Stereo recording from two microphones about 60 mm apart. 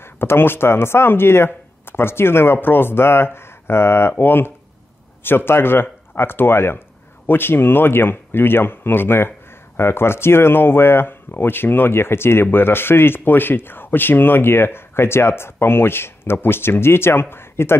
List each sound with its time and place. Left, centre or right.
0.0 s speech: left